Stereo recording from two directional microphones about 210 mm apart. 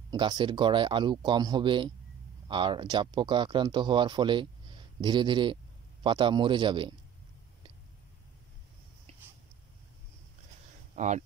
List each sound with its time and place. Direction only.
0.1 s speech: 20° right (ahead or behind)
11.0 s speech: 35° right (ahead or behind)